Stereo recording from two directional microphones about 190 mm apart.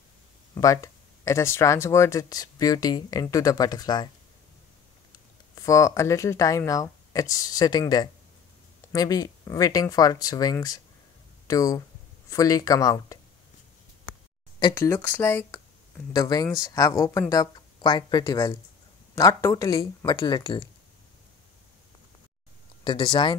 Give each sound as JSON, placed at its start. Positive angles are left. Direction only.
{"t": 0.6, "sound": "speech", "side_deg": 15}
{"t": 5.5, "sound": "speech", "side_deg": 15}
{"t": 14.6, "sound": "speech", "side_deg": 15}
{"t": 22.8, "sound": "speech", "side_deg": 25}